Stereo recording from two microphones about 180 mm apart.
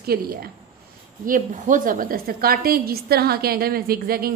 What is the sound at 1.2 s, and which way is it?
A woman's voice, 45° right (ahead or behind).